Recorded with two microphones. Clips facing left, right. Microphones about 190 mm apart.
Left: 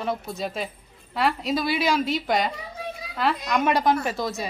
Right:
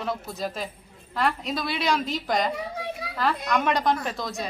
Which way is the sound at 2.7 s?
65° right (ahead or behind).